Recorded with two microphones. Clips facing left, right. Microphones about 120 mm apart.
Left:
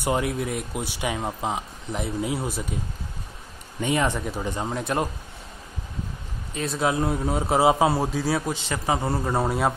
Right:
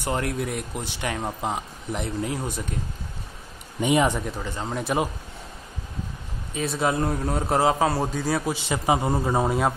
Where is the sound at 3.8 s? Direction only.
15° right (ahead or behind).